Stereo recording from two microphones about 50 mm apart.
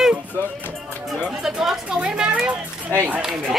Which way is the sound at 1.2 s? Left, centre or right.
Centre.